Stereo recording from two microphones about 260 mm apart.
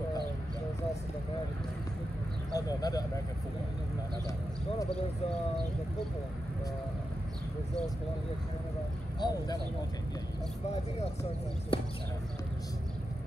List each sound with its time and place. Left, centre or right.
2.5 s speech: centre
9.2 s speech: centre
11.7 s speech: left